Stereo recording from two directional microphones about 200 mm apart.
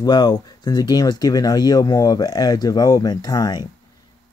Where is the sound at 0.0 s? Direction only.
20° left (ahead or behind).